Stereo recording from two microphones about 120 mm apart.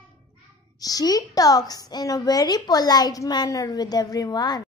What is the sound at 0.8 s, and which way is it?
A woman's voice, 30° left (ahead or behind).